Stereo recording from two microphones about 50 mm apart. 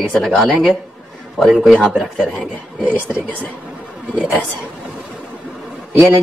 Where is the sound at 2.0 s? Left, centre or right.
Centre.